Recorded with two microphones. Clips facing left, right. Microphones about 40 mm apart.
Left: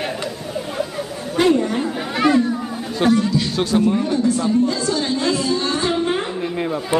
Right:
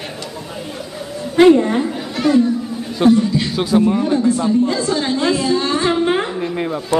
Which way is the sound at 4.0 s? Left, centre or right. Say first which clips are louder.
Right 3 dB; right.